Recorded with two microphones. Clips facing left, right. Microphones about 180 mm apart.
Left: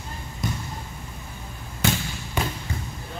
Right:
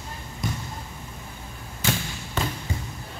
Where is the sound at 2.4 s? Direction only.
15° left (ahead or behind).